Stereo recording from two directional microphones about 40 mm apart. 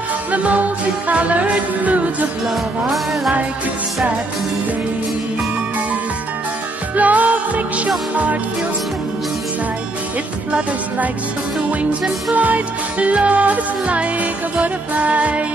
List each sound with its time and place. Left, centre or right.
0.3 s music: right
2.4 s music: centre
7.0 s music: right
12.3 s music: right